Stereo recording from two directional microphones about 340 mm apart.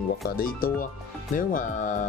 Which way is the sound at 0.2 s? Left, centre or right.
Left.